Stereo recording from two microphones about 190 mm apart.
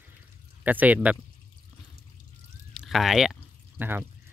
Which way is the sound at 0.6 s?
10° right (ahead or behind).